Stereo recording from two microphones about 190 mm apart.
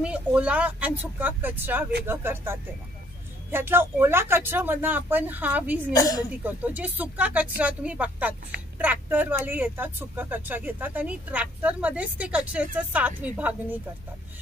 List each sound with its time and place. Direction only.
0.0 s speech: 5° right (ahead or behind)
5.9 s a woman's voice: 20° left (ahead or behind)
6.4 s speech: 10° right (ahead or behind)